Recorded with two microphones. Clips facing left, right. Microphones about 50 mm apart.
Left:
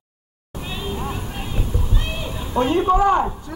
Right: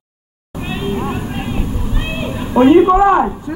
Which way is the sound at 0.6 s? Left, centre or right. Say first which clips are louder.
Right 8 dB; right.